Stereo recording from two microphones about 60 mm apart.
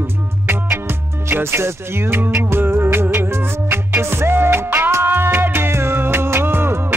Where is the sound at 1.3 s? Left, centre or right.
Right.